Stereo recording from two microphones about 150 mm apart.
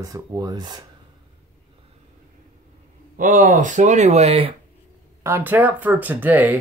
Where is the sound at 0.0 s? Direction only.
25° right (ahead or behind).